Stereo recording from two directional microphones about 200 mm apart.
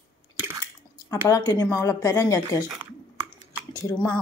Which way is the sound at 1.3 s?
20° left (ahead or behind).